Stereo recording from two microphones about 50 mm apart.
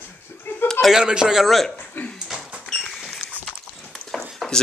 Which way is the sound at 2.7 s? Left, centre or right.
Centre.